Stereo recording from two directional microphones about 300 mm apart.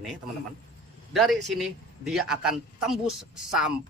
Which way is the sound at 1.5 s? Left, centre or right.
Centre.